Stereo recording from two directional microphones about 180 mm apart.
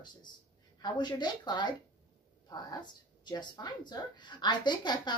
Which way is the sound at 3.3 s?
25° left (ahead or behind).